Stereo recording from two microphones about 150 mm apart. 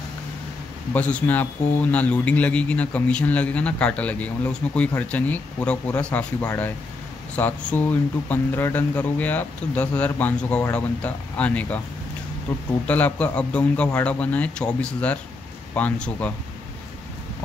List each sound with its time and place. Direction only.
0.9 s speech: 10° left (ahead or behind)